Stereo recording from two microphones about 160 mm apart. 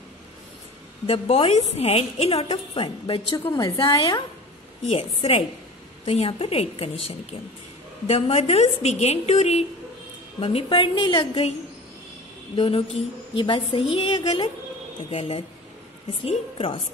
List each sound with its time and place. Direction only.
1.0 s a woman's voice: 35° left (ahead or behind)
12.5 s a woman's voice: 35° left (ahead or behind)